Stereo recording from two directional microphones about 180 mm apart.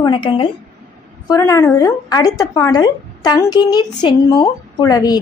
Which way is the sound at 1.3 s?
15° left (ahead or behind).